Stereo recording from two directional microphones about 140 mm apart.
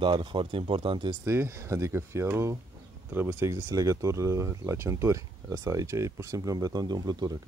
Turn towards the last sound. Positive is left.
turn(degrees=-30)  # may be behind; listen again after turning